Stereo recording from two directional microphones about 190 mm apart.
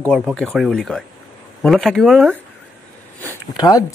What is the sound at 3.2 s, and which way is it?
Speech, 20° left (ahead or behind).